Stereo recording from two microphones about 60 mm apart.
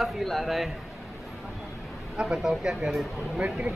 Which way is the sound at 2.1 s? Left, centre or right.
Centre.